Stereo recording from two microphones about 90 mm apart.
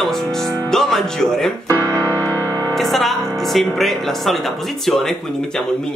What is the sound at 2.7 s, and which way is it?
A woman's voice, centre (ahead or behind).